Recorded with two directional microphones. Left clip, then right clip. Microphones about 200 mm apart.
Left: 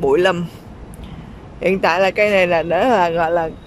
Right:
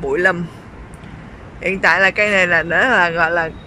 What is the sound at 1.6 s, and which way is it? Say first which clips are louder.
Speech: right 1 dB; 15° left (ahead or behind).